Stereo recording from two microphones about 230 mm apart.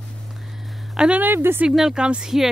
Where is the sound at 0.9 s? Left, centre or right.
Centre.